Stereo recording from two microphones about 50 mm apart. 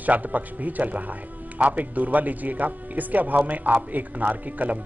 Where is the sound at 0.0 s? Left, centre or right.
Right.